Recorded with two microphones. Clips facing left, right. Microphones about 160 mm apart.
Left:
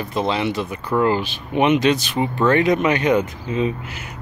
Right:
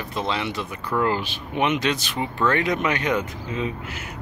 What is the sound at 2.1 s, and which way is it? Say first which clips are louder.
Speech: left 5 dB; 25° left (ahead or behind).